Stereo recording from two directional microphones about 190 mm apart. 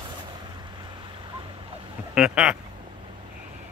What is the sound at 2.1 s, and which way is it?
Speech, 5° right (ahead or behind).